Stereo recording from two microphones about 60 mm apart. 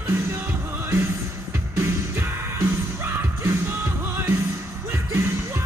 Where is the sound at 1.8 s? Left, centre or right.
Right.